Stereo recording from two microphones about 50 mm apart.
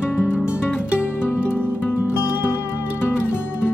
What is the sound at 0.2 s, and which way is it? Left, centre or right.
Music, left.